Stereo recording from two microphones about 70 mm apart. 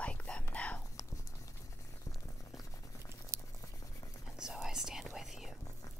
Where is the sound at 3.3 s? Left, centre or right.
Right.